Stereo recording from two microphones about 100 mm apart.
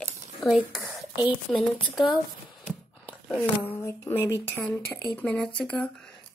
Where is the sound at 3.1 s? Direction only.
15° left (ahead or behind).